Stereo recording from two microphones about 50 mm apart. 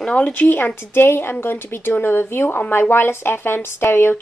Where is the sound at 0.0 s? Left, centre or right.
Left.